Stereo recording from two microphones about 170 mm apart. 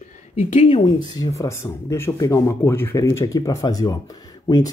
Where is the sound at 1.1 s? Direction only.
20° left (ahead or behind).